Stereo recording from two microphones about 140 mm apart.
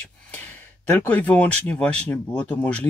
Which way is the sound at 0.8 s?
10° left (ahead or behind).